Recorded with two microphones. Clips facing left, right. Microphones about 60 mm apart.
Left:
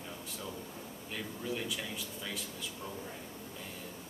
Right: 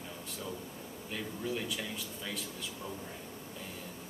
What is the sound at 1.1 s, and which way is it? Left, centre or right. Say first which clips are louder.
Speech: right 2 dB; centre.